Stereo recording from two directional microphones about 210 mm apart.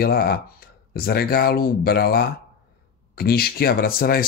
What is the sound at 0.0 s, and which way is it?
Speech, 45° left (ahead or behind).